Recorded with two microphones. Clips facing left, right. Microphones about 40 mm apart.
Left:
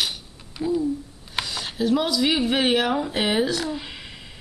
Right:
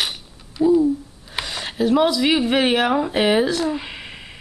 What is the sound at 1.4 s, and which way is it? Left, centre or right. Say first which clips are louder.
Speech: right 4 dB; right.